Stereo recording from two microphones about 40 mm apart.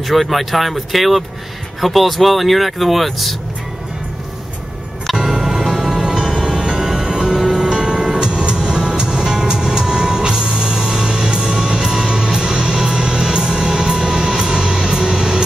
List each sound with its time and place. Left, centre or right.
0.0 s speech: centre
5.1 s music: centre